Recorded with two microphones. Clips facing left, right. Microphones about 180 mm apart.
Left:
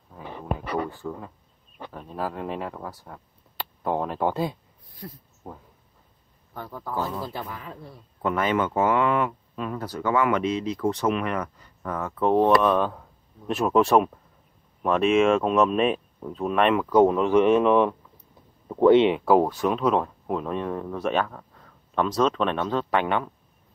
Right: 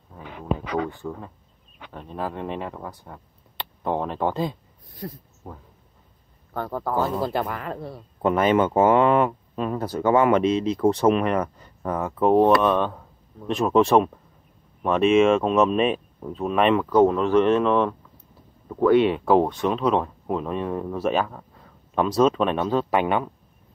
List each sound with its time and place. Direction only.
1.0 s speech: 10° right (ahead or behind)
2.0 s speech: 5° left (ahead or behind)
5.0 s speech: 45° right (ahead or behind)
6.5 s a man's voice: 60° right (ahead or behind)
7.2 s speech: 70° right (ahead or behind)
8.2 s speech: 25° right (ahead or behind)
12.2 s speech: 5° right (ahead or behind)
16.9 s speech: 15° left (ahead or behind)
19.2 s speech: 5° left (ahead or behind); by 23.3 s 10° right (ahead or behind)